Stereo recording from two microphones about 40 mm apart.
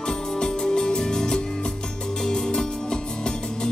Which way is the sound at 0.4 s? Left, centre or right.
Centre.